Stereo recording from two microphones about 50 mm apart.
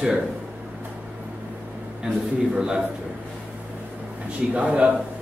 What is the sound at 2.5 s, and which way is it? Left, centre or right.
Speech, centre.